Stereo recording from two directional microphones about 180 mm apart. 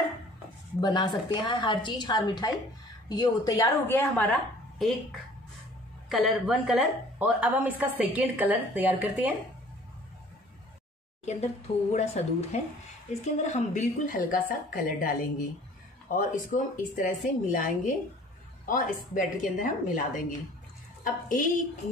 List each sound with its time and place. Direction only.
0.7 s a woman's voice: 25° left (ahead or behind); by 4.9 s 5° left (ahead or behind)
6.0 s a woman's voice: centre (ahead or behind)
11.2 s a woman's voice: 40° left (ahead or behind)